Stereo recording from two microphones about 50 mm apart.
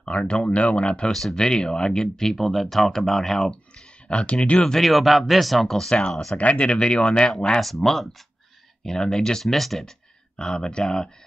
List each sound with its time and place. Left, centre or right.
0.0 s speech: centre
1.1 s speech: centre
4.1 s speech: left
4.7 s speech: centre
6.3 s speech: left; by 9.9 s centre
10.3 s speech: centre